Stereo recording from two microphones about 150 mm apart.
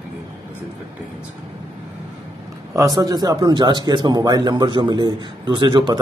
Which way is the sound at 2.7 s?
25° right (ahead or behind).